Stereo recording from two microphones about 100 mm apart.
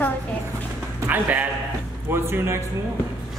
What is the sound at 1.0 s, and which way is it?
A woman's voice, 15° right (ahead or behind).